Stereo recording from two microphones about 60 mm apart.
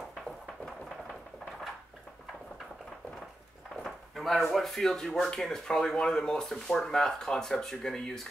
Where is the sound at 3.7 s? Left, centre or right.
Centre.